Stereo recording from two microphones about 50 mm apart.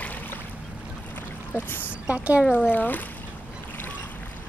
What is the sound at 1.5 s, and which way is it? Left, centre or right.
Speech, left.